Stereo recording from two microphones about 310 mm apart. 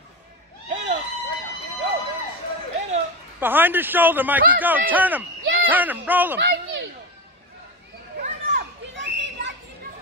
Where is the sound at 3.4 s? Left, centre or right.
Centre.